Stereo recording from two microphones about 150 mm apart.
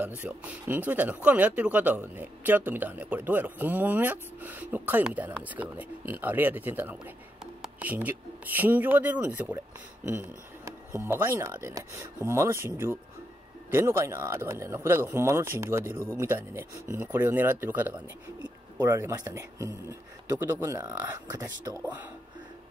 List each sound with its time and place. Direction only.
0.2 s speech: 10° right (ahead or behind)
21.8 s speech: 10° right (ahead or behind)